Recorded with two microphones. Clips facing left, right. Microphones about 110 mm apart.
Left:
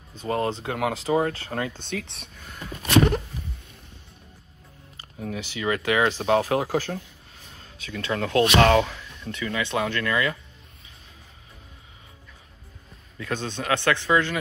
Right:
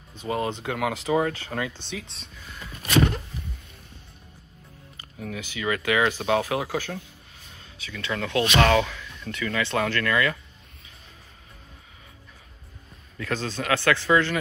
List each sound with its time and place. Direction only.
0.2 s speech: 35° left (ahead or behind)
1.7 s speech: 55° left (ahead or behind)
4.9 s speech: 30° left (ahead or behind)
13.2 s speech: 20° left (ahead or behind)